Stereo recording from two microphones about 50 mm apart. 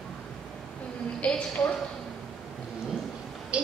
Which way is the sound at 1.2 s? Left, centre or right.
Left.